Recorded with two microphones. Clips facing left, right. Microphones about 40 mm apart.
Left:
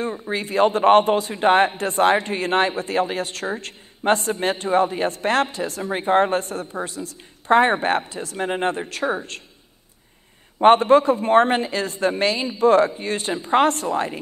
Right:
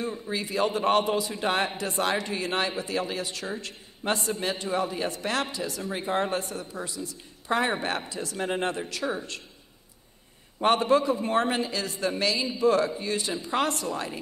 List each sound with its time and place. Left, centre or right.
0.0 s a man's voice: left
8.4 s a man's voice: left
10.6 s a man's voice: left